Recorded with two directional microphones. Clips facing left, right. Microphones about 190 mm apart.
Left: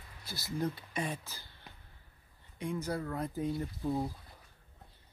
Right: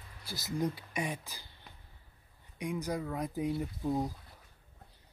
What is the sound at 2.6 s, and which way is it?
Speech, 15° right (ahead or behind).